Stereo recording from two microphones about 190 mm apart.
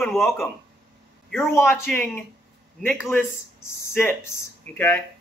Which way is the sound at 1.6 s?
15° left (ahead or behind).